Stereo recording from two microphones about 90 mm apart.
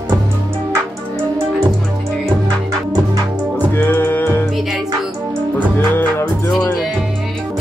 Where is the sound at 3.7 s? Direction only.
25° left (ahead or behind).